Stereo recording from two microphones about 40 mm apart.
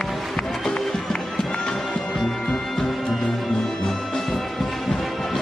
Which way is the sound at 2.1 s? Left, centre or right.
Centre.